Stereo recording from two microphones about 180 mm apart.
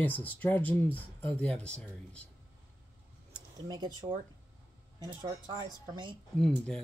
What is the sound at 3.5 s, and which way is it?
Speech, 20° right (ahead or behind).